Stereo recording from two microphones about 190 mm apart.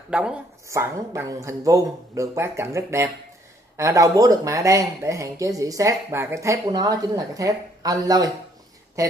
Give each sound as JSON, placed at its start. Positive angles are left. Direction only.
{"t": 0.1, "sound": "speech", "side_deg": -5}